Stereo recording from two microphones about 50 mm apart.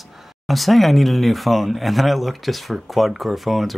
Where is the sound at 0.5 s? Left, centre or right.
Centre.